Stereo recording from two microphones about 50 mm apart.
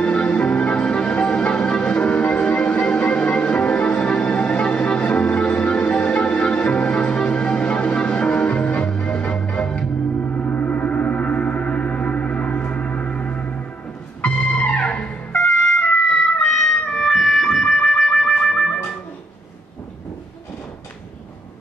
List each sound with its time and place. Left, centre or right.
0.0 s music: centre
10.2 s gong: left
14.2 s music: centre
16.4 s music: centre